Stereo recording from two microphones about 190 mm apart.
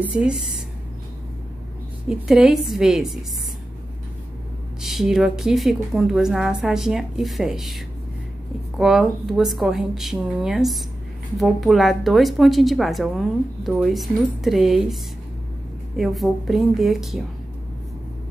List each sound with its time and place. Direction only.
0.0 s a woman's voice: 5° right (ahead or behind)
2.0 s a woman's voice: 5° right (ahead or behind)
4.8 s a woman's voice: centre (ahead or behind)
16.0 s a woman's voice: centre (ahead or behind)